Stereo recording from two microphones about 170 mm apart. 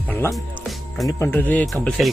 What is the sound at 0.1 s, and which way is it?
Music, 15° left (ahead or behind).